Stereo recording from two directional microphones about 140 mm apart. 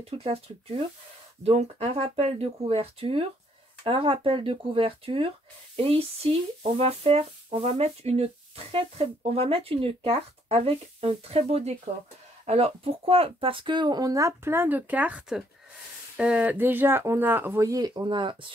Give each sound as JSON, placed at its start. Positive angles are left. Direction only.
{"t": 0.0, "sound": "speech", "side_deg": -45}